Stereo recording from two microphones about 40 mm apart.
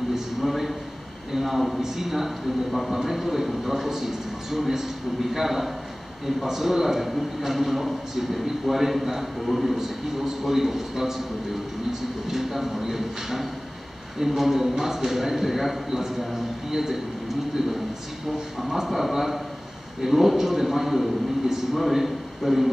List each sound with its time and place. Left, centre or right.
0.1 s a sound: centre
1.3 s a man's voice: centre
18.6 s a man's voice: centre